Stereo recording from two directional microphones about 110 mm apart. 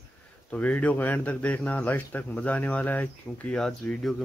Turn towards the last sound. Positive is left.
turn(degrees=5)  # may be behind; listen again after turning